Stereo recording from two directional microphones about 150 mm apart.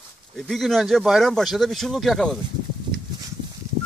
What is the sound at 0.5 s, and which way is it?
Speech, centre (ahead or behind).